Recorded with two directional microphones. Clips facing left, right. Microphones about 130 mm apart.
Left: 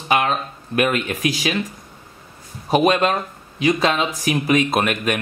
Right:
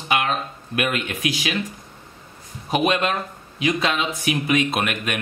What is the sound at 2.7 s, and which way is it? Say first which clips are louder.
Speech: left 4 dB; 40° left (ahead or behind).